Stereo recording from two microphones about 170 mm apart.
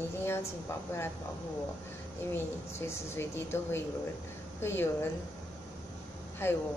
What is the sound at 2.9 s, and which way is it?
A woman's voice, 15° left (ahead or behind).